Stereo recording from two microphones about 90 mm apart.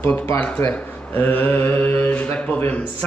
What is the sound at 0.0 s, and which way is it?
Mantra, 25° left (ahead or behind).